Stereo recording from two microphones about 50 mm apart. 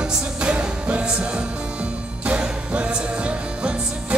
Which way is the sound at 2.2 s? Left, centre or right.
Right.